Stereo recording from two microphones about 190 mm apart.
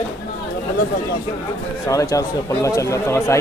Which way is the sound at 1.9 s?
15° left (ahead or behind).